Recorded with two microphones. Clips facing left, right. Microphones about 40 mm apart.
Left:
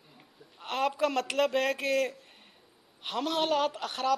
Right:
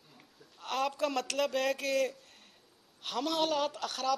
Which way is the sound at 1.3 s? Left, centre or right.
Centre.